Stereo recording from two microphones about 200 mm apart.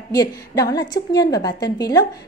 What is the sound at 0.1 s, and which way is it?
A woman's voice, 20° left (ahead or behind).